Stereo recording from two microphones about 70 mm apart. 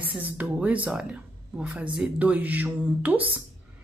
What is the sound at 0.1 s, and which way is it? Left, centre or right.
Speech, right.